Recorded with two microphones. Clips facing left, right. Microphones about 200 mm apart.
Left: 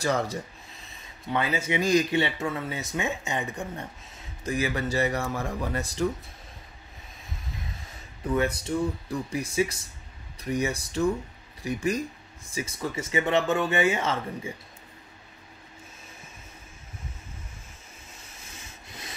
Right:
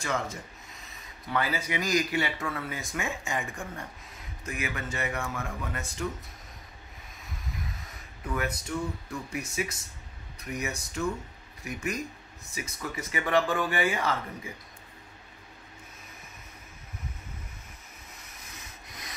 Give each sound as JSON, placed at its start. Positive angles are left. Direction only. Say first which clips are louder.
{"t": 0.0, "sound": "speech", "louder": "left 5 dB", "side_deg": 35}
{"t": 0.8, "sound": "speech", "louder": "left 5 dB", "side_deg": 25}
{"t": 7.2, "sound": "a sound", "louder": "right 1 dB", "side_deg": 25}
{"t": 10.4, "sound": "speech", "louder": "left 7 dB", "side_deg": 30}
{"t": 18.1, "sound": "rub", "louder": "left 1 dB", "side_deg": 30}